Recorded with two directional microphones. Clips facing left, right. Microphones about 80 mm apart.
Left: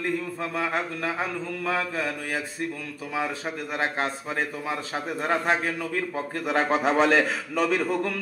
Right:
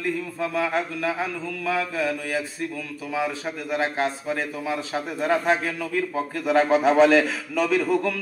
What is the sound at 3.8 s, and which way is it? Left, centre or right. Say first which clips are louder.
A man's voice: right 2 dB; left.